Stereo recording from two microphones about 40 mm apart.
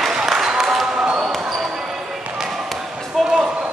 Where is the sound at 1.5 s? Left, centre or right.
Centre.